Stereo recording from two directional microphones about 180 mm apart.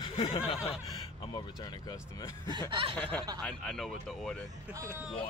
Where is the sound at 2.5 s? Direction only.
25° right (ahead or behind).